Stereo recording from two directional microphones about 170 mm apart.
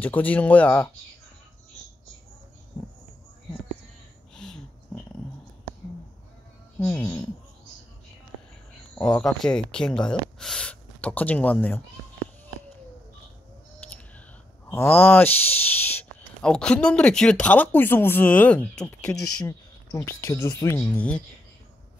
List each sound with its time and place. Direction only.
0.0 s speech: 10° left (ahead or behind)
6.8 s speech: 10° left (ahead or behind)
8.9 s speech: 5° left (ahead or behind)
14.7 s speech: 10° left (ahead or behind)